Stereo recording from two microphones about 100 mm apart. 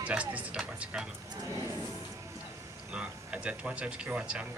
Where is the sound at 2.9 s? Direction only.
10° right (ahead or behind).